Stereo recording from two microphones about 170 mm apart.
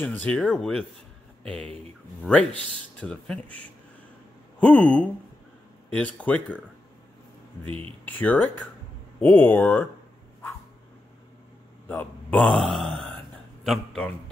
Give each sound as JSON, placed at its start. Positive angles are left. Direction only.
{"t": 0.0, "sound": "speech", "side_deg": 10}
{"t": 7.6, "sound": "speech", "side_deg": -35}
{"t": 8.0, "sound": "speech", "side_deg": 10}
{"t": 11.9, "sound": "a man's voice", "side_deg": 10}